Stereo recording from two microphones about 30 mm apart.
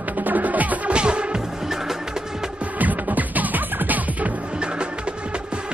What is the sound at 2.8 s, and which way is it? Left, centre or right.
Music, right.